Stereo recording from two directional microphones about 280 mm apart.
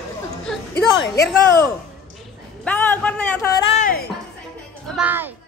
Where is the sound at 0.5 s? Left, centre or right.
Centre.